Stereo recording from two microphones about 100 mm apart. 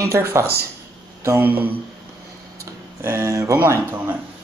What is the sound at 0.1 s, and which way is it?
Speech, 30° right (ahead or behind).